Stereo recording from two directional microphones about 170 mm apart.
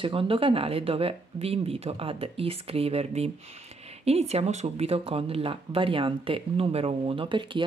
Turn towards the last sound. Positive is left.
turn(degrees=-30)  # may be behind; listen again after turning